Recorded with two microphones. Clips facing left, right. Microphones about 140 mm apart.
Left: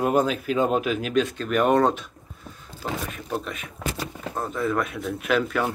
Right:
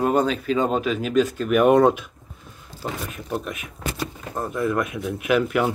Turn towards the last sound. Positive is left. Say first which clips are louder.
# right 3 dB
turn(degrees=-10)  # may be behind; listen again after turning